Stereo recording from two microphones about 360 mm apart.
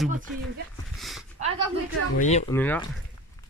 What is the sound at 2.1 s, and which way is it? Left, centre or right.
Speech, centre.